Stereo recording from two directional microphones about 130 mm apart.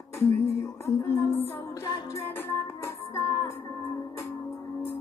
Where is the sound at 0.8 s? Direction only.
20° left (ahead or behind).